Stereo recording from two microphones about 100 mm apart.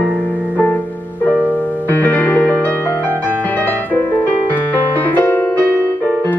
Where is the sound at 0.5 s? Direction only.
15° left (ahead or behind).